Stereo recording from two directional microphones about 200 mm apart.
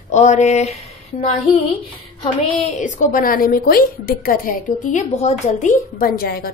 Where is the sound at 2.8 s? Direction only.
40° left (ahead or behind).